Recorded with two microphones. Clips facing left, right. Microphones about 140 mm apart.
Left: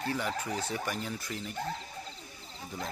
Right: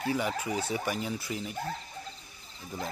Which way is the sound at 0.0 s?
10° right (ahead or behind).